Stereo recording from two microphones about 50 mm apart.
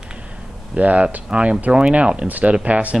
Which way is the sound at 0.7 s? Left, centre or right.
Right.